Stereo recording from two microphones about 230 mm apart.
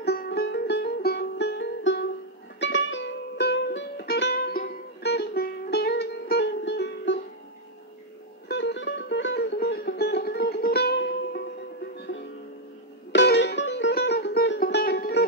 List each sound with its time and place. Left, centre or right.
0.0 s music: left
8.5 s music: left
13.1 s music: left